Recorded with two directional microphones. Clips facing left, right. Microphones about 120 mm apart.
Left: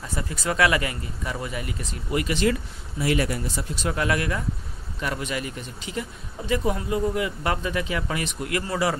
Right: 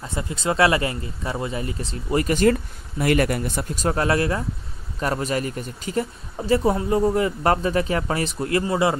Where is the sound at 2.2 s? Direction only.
45° right (ahead or behind).